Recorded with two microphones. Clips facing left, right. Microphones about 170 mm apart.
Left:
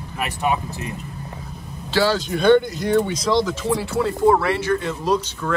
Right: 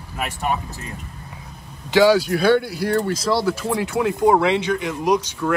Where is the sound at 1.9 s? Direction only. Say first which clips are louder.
Right 5 dB; 15° right (ahead or behind).